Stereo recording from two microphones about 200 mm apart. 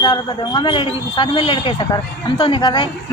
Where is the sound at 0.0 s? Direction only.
25° left (ahead or behind).